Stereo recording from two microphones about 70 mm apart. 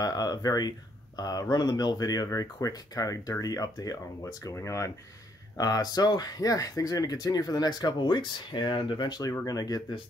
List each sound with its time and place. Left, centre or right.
0.0 s speech: left
5.6 s speech: left
8.5 s speech: left
9.5 s speech: left